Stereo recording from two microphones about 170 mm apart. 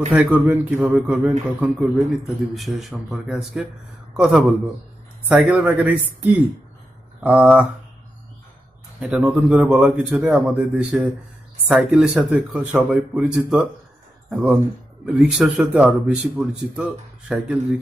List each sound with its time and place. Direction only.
0.1 s speech: 10° right (ahead or behind)
7.2 s speech: 5° right (ahead or behind)
9.0 s speech: 10° right (ahead or behind)